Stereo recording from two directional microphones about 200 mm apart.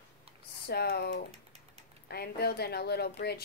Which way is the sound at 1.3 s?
30° right (ahead or behind).